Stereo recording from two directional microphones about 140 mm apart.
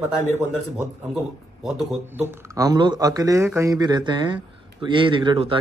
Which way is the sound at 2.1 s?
20° right (ahead or behind).